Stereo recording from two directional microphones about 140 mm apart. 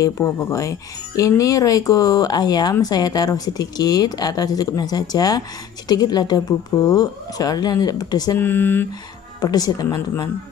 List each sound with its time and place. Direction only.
0.0 s speech: 20° left (ahead or behind)
8.4 s speech: 15° left (ahead or behind)
9.4 s speech: 30° left (ahead or behind)